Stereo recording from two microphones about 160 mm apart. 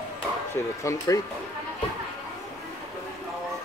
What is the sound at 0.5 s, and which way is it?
Speech, 20° left (ahead or behind).